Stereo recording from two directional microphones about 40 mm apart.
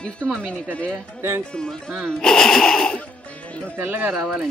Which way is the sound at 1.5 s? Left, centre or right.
Centre.